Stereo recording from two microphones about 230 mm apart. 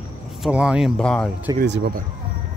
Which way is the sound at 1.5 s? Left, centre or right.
Right.